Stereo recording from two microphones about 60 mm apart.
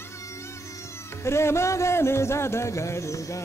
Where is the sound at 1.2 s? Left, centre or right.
Left.